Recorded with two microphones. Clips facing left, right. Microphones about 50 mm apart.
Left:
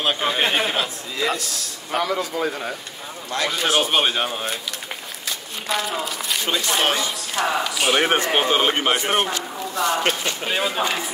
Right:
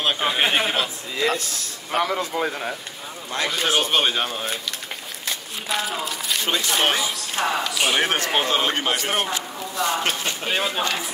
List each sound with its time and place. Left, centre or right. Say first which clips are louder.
0.0 s a sound: even; centre
1.9 s speech: right 1 dB; centre
2.3 s music: even; centre
3.4 s speech: left 1 dB; centre
5.7 s speech: left 1 dB; centre
6.9 s music: even; centre
7.4 s speech: left 1 dB; centre
8.2 s a man's voice: left 2 dB; centre
10.4 s speech: left 1 dB; centre
10.8 s a man's voice: left 2 dB; centre